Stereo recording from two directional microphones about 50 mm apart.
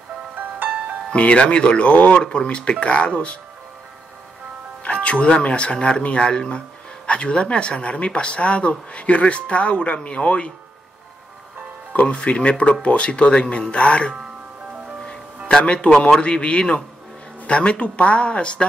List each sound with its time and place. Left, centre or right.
0.4 s music: right
1.1 s speech: left
4.8 s speech: left
11.9 s speech: left
15.6 s speech: left